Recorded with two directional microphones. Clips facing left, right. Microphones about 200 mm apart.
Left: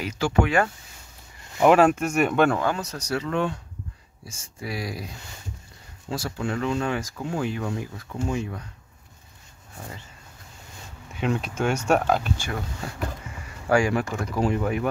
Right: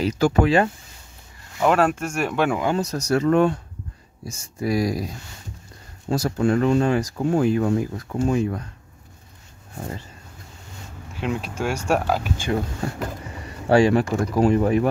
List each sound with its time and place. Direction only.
0.0 s speech: 35° right (ahead or behind)
1.6 s speech: 5° left (ahead or behind)
2.8 s speech: 40° right (ahead or behind)
6.8 s speech: 35° right (ahead or behind)
11.1 s speech: centre (ahead or behind)
13.4 s speech: 30° right (ahead or behind)